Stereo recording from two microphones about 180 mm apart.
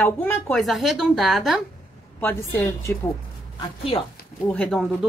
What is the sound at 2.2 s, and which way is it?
Speech, 10° left (ahead or behind).